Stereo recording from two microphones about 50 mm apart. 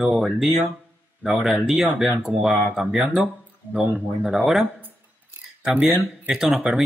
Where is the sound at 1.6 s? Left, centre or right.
Centre.